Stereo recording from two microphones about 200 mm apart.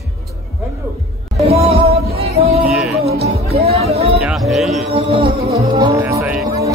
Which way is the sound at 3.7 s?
30° right (ahead or behind).